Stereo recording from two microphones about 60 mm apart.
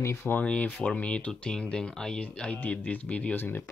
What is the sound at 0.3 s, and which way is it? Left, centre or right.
Speech, left.